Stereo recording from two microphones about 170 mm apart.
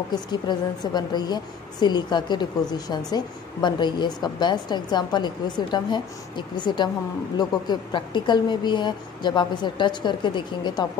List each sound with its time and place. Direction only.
0.1 s a woman's voice: 25° left (ahead or behind)